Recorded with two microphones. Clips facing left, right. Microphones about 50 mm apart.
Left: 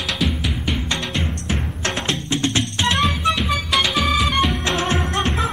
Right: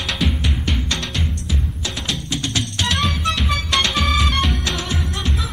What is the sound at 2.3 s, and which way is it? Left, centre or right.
Music, left.